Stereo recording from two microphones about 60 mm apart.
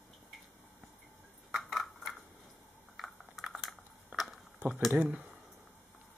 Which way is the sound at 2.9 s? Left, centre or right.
Centre.